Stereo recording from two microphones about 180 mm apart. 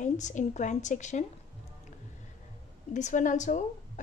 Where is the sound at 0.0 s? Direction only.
45° left (ahead or behind).